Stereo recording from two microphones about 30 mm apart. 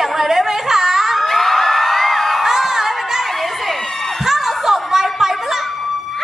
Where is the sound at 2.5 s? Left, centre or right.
Centre.